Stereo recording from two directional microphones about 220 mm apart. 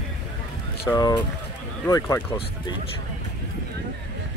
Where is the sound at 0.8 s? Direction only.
15° left (ahead or behind).